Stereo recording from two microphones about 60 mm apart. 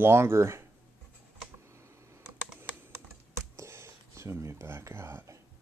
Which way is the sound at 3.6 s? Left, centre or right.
Right.